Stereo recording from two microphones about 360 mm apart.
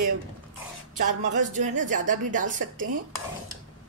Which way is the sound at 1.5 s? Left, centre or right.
Right.